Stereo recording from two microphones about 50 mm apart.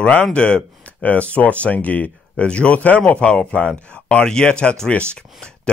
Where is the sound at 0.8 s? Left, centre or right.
Left.